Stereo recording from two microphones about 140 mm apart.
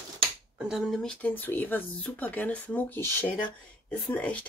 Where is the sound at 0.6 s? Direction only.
5° right (ahead or behind).